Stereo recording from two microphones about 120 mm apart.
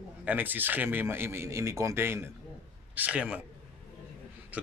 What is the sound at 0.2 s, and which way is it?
Speech, 15° right (ahead or behind).